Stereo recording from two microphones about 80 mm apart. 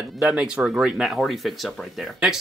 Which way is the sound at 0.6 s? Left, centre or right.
Centre.